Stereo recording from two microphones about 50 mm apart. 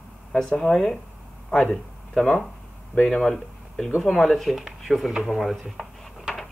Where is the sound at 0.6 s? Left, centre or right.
Centre.